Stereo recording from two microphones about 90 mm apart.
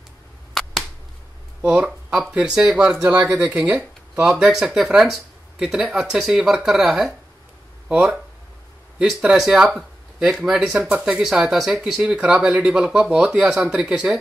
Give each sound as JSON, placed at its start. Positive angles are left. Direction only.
{"t": 1.6, "sound": "speech", "side_deg": -20}
{"t": 2.0, "sound": "speech", "side_deg": -5}
{"t": 7.9, "sound": "speech", "side_deg": -15}